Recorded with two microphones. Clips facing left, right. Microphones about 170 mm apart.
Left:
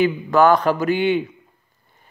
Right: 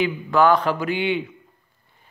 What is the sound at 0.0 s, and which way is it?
Speech, 45° left (ahead or behind).